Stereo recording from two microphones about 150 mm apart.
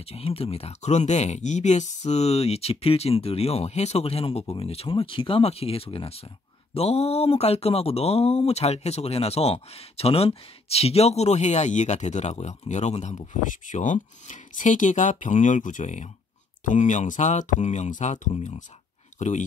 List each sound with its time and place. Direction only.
0.0 s speech: 40° left (ahead or behind)